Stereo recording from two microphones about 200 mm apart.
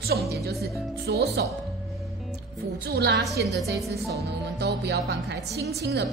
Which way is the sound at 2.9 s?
55° right (ahead or behind).